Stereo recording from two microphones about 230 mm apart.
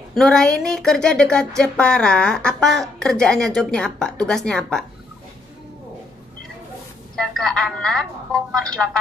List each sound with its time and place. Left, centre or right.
0.1 s speech: centre
7.2 s speech: centre